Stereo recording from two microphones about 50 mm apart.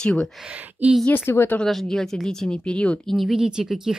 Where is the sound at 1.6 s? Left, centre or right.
Centre; by 3.0 s left.